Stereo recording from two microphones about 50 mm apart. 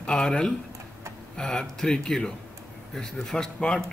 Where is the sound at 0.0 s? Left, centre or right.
Centre.